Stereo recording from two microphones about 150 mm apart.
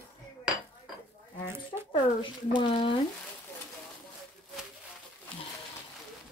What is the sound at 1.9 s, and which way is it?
Speech, 35° left (ahead or behind).